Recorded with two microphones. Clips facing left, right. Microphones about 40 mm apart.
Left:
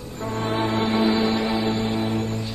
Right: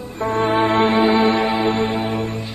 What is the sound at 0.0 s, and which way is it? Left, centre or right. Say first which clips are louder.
Music: right 8 dB; right.